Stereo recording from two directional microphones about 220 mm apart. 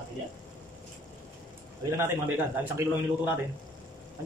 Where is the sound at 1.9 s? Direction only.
10° right (ahead or behind).